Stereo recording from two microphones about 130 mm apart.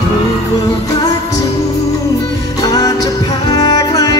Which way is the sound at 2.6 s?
30° left (ahead or behind).